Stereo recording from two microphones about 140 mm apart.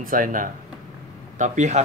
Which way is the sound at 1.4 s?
60° right (ahead or behind).